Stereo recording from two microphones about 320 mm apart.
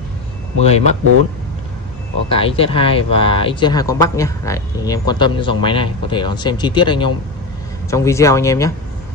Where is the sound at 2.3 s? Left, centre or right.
Centre.